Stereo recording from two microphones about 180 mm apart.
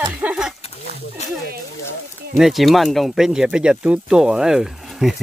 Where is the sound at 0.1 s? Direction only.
5° right (ahead or behind).